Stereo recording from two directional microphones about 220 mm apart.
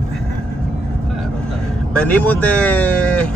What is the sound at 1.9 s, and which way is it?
Speech, 5° left (ahead or behind).